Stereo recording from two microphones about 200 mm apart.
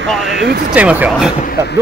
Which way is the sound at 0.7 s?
5° right (ahead or behind).